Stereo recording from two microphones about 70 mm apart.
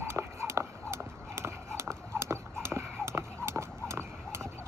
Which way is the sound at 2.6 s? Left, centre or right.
Right.